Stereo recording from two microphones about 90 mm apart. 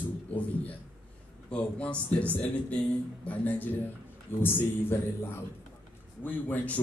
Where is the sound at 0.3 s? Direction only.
15° left (ahead or behind).